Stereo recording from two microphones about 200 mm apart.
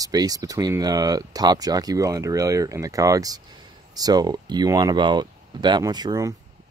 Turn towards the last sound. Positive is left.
turn(degrees=-20)  # may be behind; listen again after turning